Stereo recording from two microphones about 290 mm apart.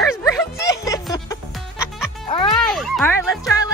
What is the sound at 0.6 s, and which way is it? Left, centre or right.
Music, centre.